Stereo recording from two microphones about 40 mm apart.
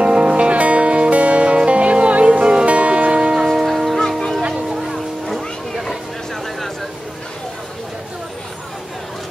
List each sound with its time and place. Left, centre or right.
0.0 s music: right
3.6 s music: centre
4.4 s a sound: right